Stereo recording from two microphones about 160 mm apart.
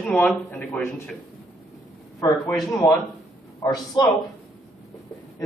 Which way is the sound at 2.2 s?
20° left (ahead or behind).